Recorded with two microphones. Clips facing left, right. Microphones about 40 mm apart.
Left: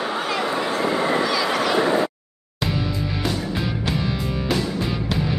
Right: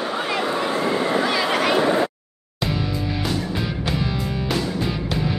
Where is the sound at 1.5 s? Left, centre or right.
Right.